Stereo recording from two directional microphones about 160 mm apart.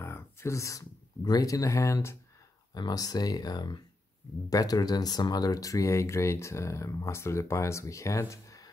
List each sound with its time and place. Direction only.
0.0 s speech: 15° left (ahead or behind)